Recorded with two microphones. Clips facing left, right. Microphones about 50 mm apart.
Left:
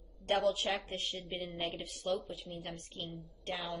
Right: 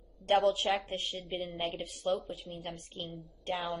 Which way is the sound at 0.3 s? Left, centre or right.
Right.